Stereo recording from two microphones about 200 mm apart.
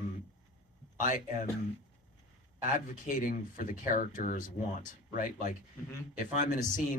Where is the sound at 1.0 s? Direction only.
40° left (ahead or behind).